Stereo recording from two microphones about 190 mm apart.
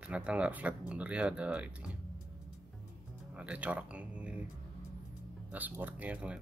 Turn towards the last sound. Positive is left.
turn(degrees=-5)  # may be behind; listen again after turning